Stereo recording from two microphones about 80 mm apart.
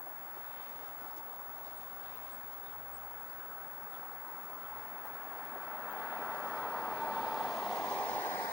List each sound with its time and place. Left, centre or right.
5.4 s vehicle: centre
7.9 s train: centre